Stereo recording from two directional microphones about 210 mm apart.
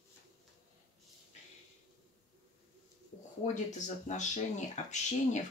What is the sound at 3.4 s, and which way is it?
Speech, 25° left (ahead or behind).